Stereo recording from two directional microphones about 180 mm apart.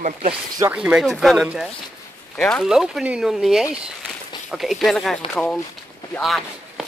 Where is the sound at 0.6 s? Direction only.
5° right (ahead or behind).